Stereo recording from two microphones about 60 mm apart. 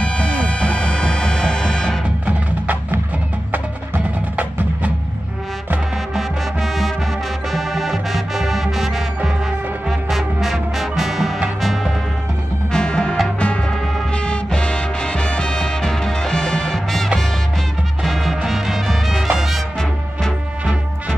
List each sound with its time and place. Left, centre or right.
0.0 s music: centre
2.0 s wood block: right
3.5 s music: right
6.1 s music: centre
12.7 s music: centre